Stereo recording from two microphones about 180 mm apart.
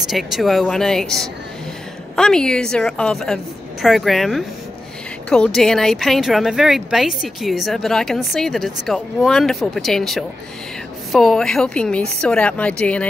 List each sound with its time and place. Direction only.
0.1 s speech: centre (ahead or behind)